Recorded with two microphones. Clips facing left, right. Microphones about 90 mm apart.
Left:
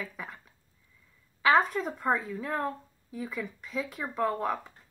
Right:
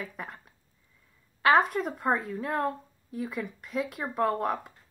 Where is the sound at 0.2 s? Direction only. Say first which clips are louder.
Right 2 dB; 45° right (ahead or behind).